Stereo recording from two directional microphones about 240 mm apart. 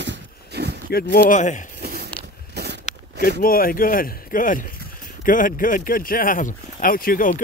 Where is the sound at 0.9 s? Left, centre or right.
Left.